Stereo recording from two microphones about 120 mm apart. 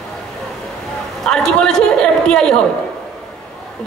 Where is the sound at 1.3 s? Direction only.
5° left (ahead or behind).